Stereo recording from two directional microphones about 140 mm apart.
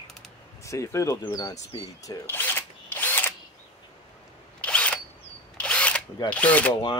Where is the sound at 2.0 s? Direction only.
20° left (ahead or behind).